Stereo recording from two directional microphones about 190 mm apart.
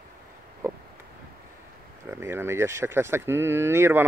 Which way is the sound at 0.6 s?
15° right (ahead or behind).